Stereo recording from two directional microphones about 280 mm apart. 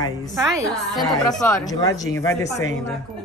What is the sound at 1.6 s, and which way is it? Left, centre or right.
Speech, centre.